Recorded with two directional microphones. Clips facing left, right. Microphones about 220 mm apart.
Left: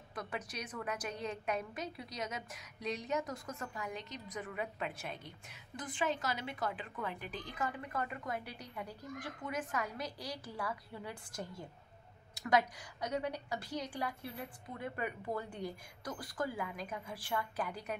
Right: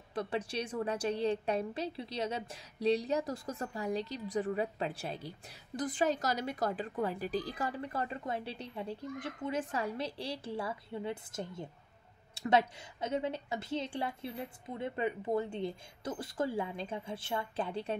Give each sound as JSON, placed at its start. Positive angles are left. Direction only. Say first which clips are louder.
{"t": 0.1, "sound": "a woman's voice", "louder": "right 8 dB", "side_deg": -30}